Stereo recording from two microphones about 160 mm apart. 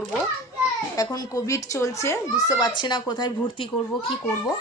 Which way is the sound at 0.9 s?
20° left (ahead or behind).